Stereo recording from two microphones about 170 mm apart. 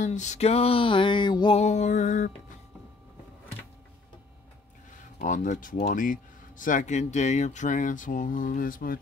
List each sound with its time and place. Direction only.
0.0 s a sound: 45° left (ahead or behind); by 1.6 s 25° left (ahead or behind)
1.6 s speech: 45° left (ahead or behind)
5.2 s speech: 50° left (ahead or behind)